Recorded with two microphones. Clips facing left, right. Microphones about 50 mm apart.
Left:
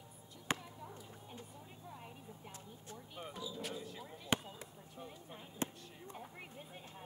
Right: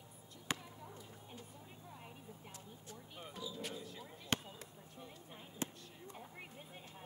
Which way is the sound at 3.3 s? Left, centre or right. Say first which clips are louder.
Even; centre.